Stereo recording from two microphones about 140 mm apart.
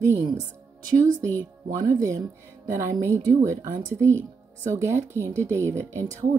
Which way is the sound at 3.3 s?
20° right (ahead or behind).